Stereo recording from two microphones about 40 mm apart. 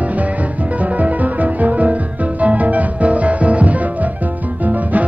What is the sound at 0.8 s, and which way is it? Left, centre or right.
Music, right.